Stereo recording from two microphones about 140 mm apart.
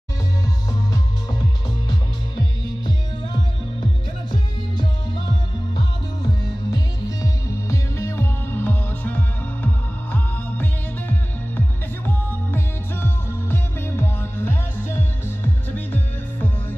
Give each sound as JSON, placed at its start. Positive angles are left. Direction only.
{"t": 6.7, "sound": "music", "side_deg": 25}